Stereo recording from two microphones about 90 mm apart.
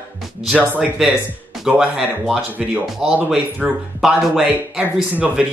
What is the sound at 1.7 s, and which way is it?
Speech, 5° right (ahead or behind).